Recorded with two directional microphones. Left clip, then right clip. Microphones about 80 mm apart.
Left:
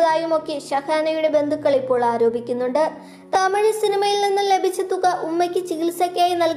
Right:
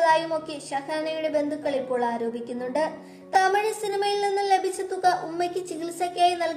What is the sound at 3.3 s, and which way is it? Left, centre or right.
A woman's voice, left.